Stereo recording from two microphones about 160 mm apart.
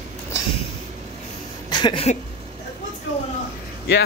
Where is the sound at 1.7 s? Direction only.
30° left (ahead or behind).